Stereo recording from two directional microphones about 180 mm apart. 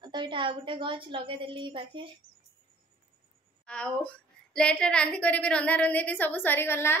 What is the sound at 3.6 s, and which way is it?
A woman's voice, 5° left (ahead or behind).